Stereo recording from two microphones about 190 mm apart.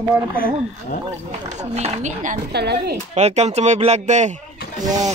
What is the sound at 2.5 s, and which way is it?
Speech, 60° right (ahead or behind).